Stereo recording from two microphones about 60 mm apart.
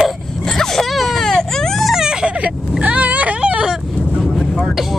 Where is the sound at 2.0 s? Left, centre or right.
Centre.